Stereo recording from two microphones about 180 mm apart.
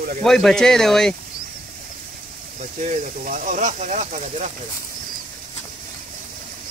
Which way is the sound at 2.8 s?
45° right (ahead or behind).